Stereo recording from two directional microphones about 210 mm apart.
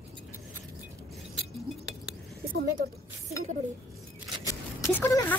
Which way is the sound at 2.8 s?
45° right (ahead or behind).